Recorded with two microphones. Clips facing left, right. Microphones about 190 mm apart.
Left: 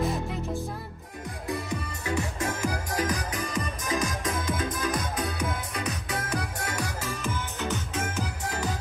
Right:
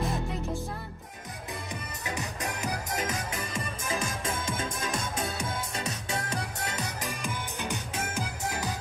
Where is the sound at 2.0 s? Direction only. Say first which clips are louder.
Left 5 dB; 20° right (ahead or behind).